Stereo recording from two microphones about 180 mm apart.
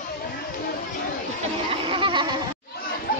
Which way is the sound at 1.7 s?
30° right (ahead or behind).